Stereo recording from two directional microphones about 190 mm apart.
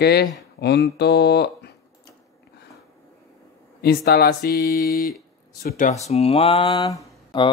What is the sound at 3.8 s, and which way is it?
Speech, 55° left (ahead or behind).